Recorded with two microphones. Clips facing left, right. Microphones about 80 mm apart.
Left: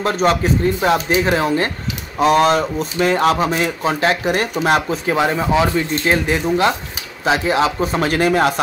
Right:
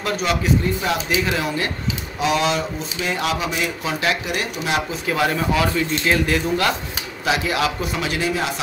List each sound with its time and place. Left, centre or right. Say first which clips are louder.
0.0 s speech: left 6 dB; left
5.1 s speech: left 3 dB; left